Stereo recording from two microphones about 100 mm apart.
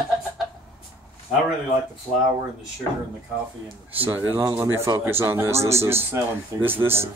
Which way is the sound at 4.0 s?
20° right (ahead or behind).